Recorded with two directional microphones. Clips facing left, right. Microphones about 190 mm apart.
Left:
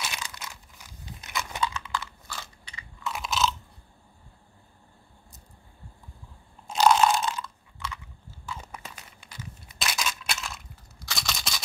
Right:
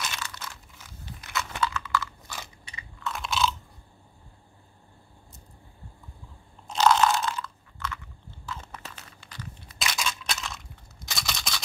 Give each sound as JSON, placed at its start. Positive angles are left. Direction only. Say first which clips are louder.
{"t": 0.0, "sound": "a sound", "louder": "right 1 dB", "side_deg": 15}
{"t": 1.2, "sound": "crunch", "louder": "right 1 dB", "side_deg": 20}
{"t": 2.2, "sound": "biting", "louder": "even", "side_deg": -20}
{"t": 3.1, "sound": "chewing", "louder": "even", "side_deg": 5}
{"t": 6.7, "sound": "biting", "louder": "left 1 dB", "side_deg": 10}
{"t": 9.8, "sound": "a sound", "louder": "even", "side_deg": 0}
{"t": 11.1, "sound": "scissors", "louder": "even", "side_deg": 0}